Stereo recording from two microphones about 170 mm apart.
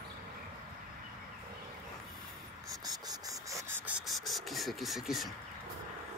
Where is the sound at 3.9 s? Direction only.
Centre (ahead or behind).